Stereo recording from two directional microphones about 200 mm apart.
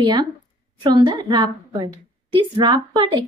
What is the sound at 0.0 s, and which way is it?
A woman's voice, 20° right (ahead or behind).